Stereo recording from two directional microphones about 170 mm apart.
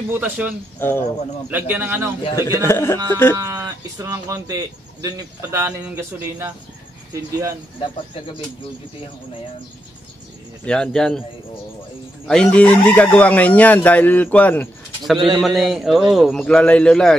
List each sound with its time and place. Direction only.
0.1 s speech: 10° right (ahead or behind)
0.7 s speech: 15° left (ahead or behind)
1.5 s speech: 10° right (ahead or behind)
2.2 s speech: 25° left (ahead or behind)
3.3 s speech: 20° right (ahead or behind)
10.6 s a man's voice: 5° left (ahead or behind)
12.3 s speech: 5° left (ahead or behind)
15.1 s speech: 30° right (ahead or behind)
15.4 s a man's voice: centre (ahead or behind)